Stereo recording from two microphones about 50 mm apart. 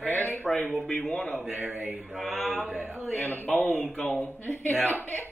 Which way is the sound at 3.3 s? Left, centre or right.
Left.